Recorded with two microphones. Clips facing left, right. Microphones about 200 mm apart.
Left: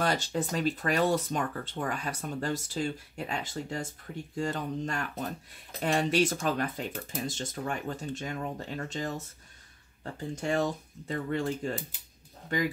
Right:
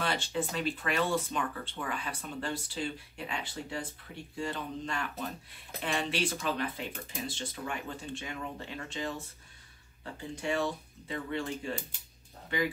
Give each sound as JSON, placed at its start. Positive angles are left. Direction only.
{"t": 0.0, "sound": "speech", "side_deg": 40}
{"t": 10.3, "sound": "speech", "side_deg": 45}